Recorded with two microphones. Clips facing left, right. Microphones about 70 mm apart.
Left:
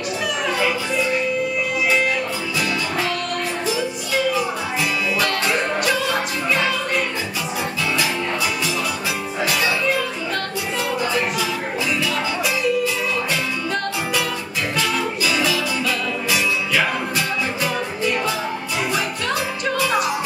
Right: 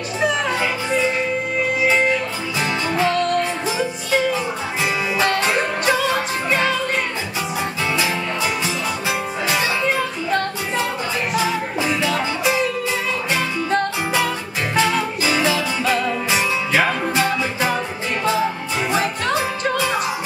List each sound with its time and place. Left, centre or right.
3.6 s music: right
12.0 s music: right